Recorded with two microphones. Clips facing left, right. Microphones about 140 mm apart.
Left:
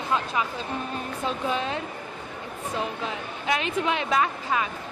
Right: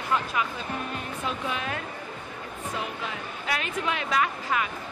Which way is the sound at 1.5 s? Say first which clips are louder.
Left 4 dB; 25° left (ahead or behind).